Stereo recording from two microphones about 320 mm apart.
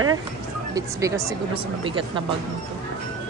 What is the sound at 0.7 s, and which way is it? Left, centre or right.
Speech, centre.